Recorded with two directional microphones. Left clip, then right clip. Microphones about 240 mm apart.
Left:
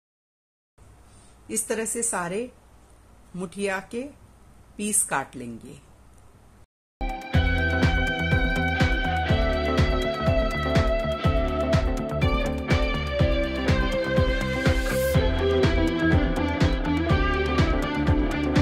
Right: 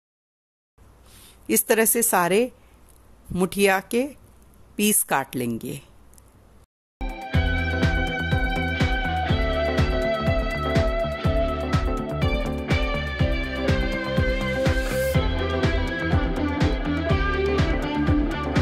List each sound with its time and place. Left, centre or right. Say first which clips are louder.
1.5 s a woman's voice: right 8 dB; right
7.1 s music: even; centre